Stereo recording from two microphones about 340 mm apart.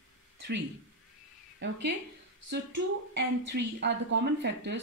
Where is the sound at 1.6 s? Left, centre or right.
Right.